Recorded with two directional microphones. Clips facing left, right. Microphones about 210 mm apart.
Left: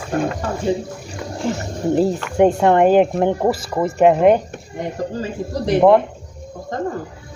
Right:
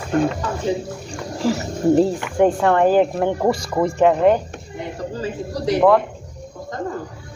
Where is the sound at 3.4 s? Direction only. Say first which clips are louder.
Even; 5° left (ahead or behind).